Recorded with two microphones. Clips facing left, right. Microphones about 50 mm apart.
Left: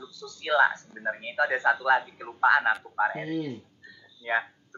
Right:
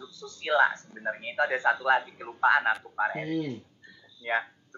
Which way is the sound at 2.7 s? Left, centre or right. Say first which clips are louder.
Left 2 dB; centre.